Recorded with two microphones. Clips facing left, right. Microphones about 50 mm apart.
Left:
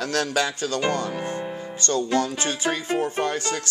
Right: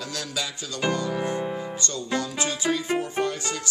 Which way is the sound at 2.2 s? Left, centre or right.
Left.